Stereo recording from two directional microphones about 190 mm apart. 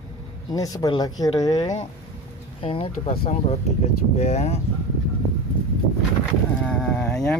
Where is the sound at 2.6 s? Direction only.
30° left (ahead or behind).